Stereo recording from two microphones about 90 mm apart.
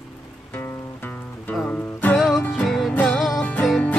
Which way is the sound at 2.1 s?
Centre (ahead or behind).